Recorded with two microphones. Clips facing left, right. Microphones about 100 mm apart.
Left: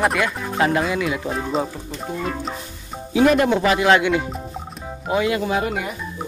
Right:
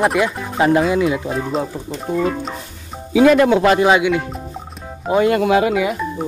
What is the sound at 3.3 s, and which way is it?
Speech, 85° right.